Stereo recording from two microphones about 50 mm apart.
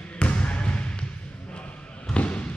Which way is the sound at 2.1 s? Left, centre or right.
Left.